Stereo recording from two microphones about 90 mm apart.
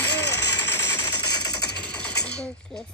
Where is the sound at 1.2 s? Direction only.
50° left (ahead or behind).